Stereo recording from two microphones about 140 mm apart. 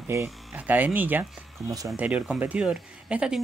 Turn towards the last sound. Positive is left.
turn(degrees=-5)  # may be behind; listen again after turning